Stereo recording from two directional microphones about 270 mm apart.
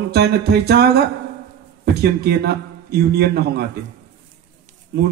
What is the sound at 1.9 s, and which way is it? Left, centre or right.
A man's voice, right.